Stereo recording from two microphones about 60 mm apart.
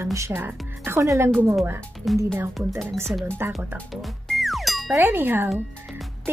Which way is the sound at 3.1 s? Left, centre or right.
Centre.